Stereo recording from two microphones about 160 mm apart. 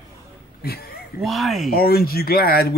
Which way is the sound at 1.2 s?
Centre (ahead or behind).